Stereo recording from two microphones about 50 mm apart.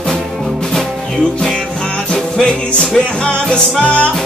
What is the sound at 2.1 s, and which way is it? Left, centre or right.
Music, centre.